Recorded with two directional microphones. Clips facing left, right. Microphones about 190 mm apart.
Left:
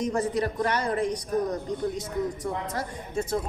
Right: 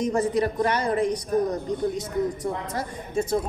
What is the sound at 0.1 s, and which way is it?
Speech, 20° right (ahead or behind).